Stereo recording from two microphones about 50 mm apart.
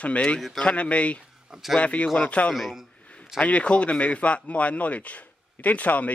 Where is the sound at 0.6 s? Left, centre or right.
Left.